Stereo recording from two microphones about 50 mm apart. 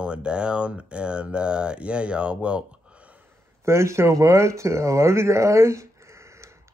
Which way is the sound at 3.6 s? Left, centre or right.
Right.